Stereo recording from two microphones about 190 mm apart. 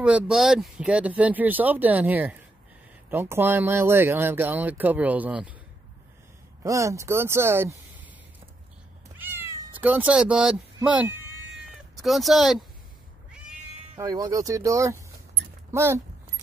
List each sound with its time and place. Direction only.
0.0 s speech: 5° right (ahead or behind)
6.6 s speech: 15° right (ahead or behind)
9.2 s cat: 10° right (ahead or behind)
9.8 s speech: 10° right (ahead or behind)
13.9 s speech: 20° right (ahead or behind)